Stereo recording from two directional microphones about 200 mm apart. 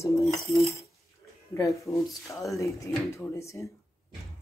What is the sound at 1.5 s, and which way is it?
Speech, 15° left (ahead or behind).